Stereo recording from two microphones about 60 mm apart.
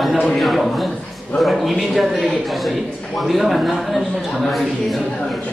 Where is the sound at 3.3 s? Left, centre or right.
Centre.